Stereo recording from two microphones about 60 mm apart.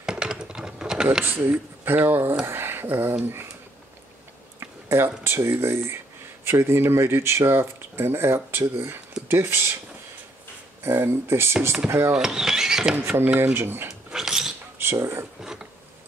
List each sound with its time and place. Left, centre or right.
0.0 s typing: centre
1.2 s speech: right
4.6 s speech: right
10.8 s speech: right
12.1 s speech: centre
12.9 s speech: right
14.1 s dog: centre
15.0 s speech: right
15.4 s a sound: centre